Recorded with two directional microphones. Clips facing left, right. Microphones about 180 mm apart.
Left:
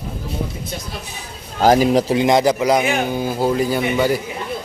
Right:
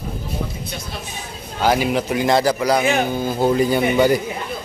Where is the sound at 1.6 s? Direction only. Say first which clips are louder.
Left 5 dB; 40° left (ahead or behind).